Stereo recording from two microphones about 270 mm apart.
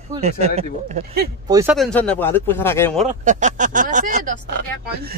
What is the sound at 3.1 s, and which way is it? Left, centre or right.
Speech, right.